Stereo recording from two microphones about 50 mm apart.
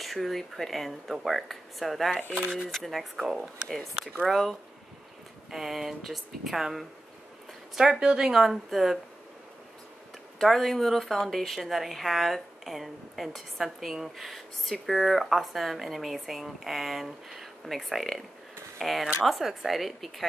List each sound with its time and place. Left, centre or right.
0.0 s speech: centre
2.3 s speech: centre
2.7 s speech: centre
8.0 s speech: centre
10.4 s speech: centre